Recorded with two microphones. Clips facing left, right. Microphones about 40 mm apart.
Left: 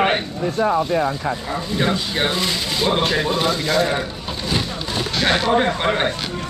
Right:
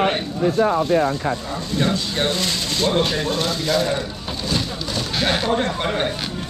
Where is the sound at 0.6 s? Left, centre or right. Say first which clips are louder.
Even; centre.